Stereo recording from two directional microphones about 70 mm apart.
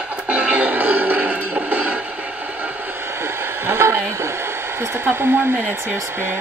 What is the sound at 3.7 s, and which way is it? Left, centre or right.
Speech, right.